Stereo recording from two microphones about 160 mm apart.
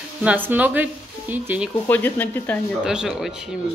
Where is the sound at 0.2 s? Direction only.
10° right (ahead or behind).